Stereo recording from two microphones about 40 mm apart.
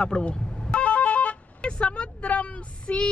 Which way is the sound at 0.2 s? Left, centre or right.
Left.